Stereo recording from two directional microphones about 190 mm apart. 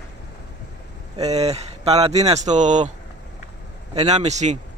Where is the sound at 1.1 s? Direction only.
35° right (ahead or behind).